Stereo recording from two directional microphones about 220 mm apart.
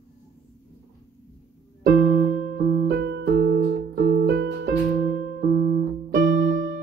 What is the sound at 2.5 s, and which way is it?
Keyboard, 50° right (ahead or behind).